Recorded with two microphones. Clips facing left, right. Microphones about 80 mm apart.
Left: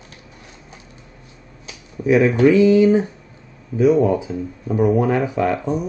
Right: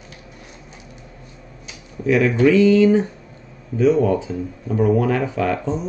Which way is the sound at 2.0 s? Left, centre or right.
Centre.